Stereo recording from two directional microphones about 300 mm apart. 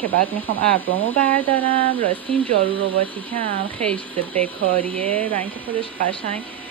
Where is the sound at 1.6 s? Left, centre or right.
Centre.